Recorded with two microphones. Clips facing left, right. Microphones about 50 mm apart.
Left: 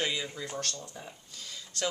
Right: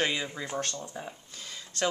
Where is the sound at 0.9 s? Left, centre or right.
Right.